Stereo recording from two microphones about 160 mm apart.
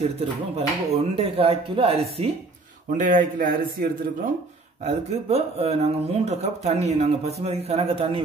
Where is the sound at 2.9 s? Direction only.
50° right (ahead or behind).